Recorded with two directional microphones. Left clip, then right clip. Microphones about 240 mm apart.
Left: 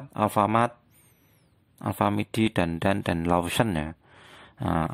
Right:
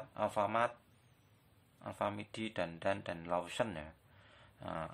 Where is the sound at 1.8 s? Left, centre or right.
Left.